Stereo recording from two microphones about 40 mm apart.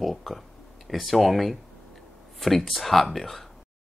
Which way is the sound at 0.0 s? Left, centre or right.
Centre.